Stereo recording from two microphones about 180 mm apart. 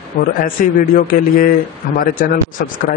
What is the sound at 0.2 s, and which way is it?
A man's voice, 50° left (ahead or behind).